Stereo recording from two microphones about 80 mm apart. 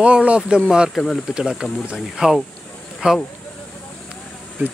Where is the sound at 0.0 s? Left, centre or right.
Centre.